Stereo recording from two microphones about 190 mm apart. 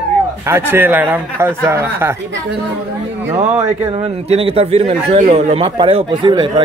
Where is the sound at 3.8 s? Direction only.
30° right (ahead or behind).